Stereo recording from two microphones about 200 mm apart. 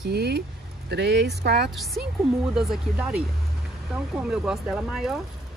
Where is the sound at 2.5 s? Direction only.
5° right (ahead or behind).